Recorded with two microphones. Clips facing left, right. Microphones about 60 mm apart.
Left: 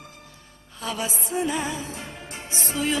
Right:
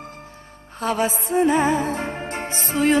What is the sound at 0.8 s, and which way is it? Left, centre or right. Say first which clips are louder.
Music: right 8 dB; right.